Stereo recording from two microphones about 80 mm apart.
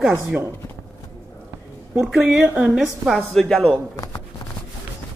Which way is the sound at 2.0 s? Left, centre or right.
Centre.